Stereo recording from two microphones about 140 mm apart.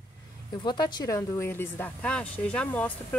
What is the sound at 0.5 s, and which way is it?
Speech, 35° left (ahead or behind).